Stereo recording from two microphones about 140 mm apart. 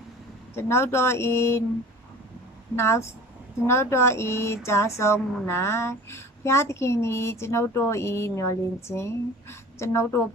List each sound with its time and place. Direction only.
0.6 s speech: 20° left (ahead or behind)
2.7 s speech: 20° left (ahead or behind)